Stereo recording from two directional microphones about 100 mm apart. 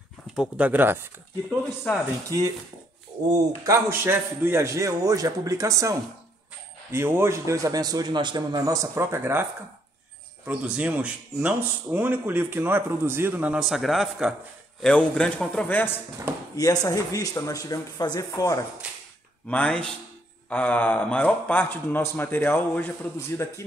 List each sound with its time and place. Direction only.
0.4 s speech: 15° right (ahead or behind)
1.9 s a man's voice: 15° left (ahead or behind)
3.3 s a man's voice: 35° right (ahead or behind)
10.4 s speech: 15° right (ahead or behind)
13.5 s a man's voice: centre (ahead or behind)
14.8 s a man's voice: 10° left (ahead or behind)
16.5 s speech: 30° left (ahead or behind)
19.5 s a man's voice: 10° left (ahead or behind); by 23.5 s 25° left (ahead or behind)